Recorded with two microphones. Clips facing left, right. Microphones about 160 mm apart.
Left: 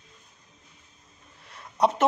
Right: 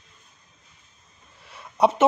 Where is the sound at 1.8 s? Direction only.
Centre (ahead or behind).